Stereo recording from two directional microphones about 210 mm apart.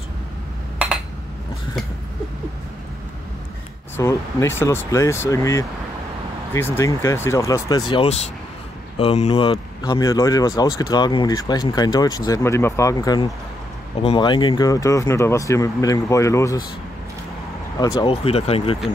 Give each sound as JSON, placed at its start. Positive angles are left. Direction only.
{"t": 3.9, "sound": "speech", "side_deg": 15}
{"t": 17.7, "sound": "speech", "side_deg": 15}
{"t": 18.1, "sound": "speech", "side_deg": 30}